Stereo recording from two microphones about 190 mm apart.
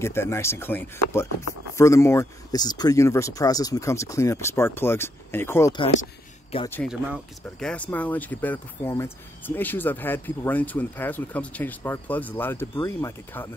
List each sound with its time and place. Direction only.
0.0 s speech: 15° left (ahead or behind)
6.5 s speech: 30° left (ahead or behind)
7.5 s speech: 5° left (ahead or behind)